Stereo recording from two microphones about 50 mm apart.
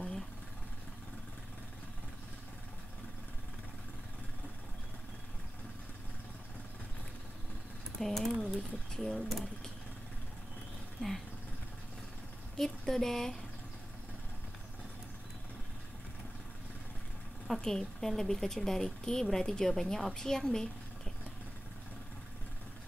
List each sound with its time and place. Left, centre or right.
8.0 s a sound: centre
8.9 s speech: centre
11.0 s speech: centre
12.5 s a woman's voice: centre
17.5 s a woman's voice: centre